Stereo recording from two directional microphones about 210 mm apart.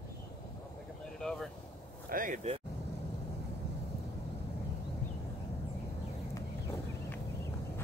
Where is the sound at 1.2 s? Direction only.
5° left (ahead or behind).